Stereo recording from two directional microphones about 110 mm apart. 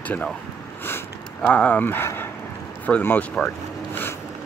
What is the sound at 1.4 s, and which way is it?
Speech, 15° left (ahead or behind).